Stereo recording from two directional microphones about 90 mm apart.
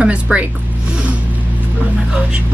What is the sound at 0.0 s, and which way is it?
Speech, 15° right (ahead or behind).